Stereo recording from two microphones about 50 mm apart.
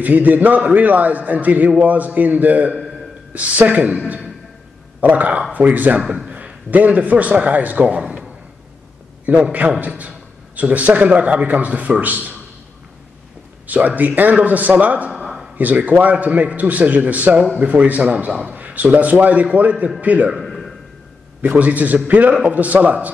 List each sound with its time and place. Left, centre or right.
0.0 s a man's voice: right
5.0 s a man's voice: right
9.2 s a man's voice: right
13.7 s a man's voice: right
20.4 s a sound: centre
21.4 s a man's voice: right